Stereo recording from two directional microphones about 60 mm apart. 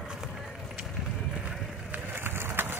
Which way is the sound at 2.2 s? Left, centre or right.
Right.